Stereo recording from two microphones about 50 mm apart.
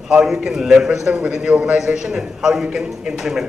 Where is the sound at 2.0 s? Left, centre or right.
Centre.